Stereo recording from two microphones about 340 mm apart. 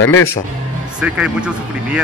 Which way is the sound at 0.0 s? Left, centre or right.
Left.